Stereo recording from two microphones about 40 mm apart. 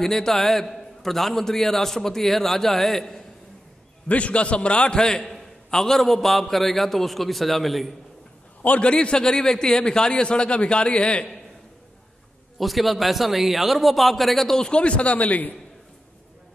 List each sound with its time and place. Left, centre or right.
0.0 s a man's voice: centre
4.1 s a man's voice: left; by 7.9 s centre
8.6 s a man's voice: left
12.5 s a man's voice: centre
14.6 s speech: left